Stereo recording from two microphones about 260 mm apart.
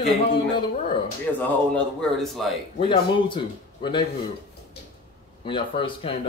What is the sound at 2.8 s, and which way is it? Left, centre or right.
A man's voice, centre.